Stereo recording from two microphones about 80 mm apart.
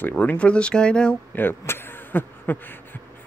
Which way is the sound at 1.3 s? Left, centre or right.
Left.